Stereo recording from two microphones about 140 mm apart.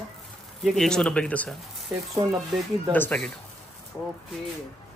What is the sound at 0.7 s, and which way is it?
Speech, 5° left (ahead or behind).